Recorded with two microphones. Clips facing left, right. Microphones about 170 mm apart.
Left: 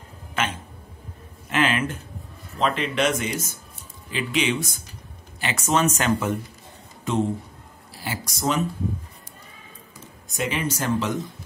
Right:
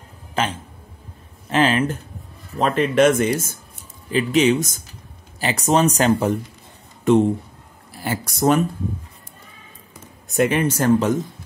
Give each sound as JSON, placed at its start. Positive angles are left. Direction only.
{"t": 0.3, "sound": "a sound", "side_deg": -35}
{"t": 2.6, "sound": "speech", "side_deg": -50}
{"t": 7.9, "sound": "speech", "side_deg": -55}
{"t": 10.2, "sound": "speech", "side_deg": -55}